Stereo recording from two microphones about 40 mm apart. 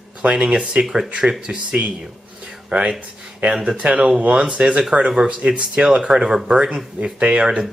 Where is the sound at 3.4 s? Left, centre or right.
Right.